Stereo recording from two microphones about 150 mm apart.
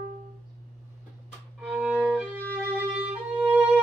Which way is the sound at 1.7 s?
5° right (ahead or behind).